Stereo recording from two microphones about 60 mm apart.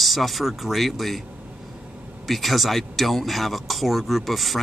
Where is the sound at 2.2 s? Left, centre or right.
Centre.